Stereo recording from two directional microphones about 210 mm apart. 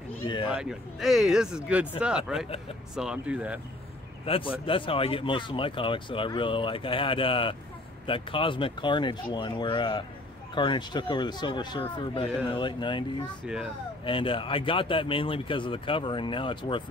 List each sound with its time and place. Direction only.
0.5 s speech: 5° right (ahead or behind)
4.6 s speech: 25° left (ahead or behind)
14.0 s speech: 25° left (ahead or behind)